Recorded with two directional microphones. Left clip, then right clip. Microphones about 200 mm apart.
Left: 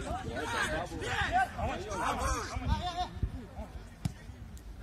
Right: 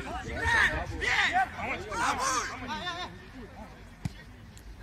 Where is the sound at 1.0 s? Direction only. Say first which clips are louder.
Right 5 dB; 55° left (ahead or behind).